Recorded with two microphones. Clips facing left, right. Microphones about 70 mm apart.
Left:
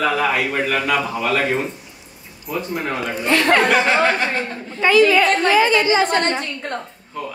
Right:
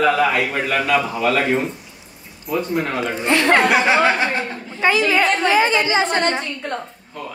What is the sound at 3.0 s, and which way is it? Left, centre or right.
Speech, right.